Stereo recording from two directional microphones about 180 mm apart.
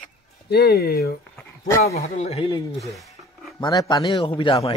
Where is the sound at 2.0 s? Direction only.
35° left (ahead or behind).